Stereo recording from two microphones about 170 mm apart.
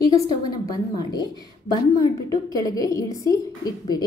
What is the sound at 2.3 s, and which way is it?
Speech, 20° left (ahead or behind).